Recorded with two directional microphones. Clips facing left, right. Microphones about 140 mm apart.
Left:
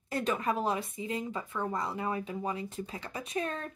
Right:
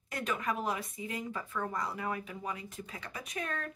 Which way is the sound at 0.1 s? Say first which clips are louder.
Left 4 dB; 30° left (ahead or behind).